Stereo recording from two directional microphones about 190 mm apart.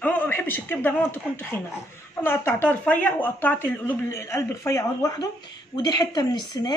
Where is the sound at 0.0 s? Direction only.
10° left (ahead or behind).